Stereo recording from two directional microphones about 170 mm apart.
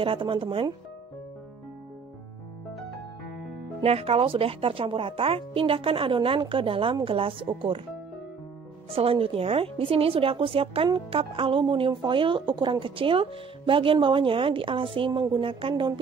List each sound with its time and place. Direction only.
0.0 s a woman's voice: 30° right (ahead or behind)
3.8 s a woman's voice: 35° right (ahead or behind)
8.9 s a woman's voice: 35° right (ahead or behind)